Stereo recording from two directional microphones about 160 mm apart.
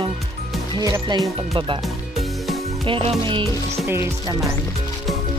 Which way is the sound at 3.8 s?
15° right (ahead or behind).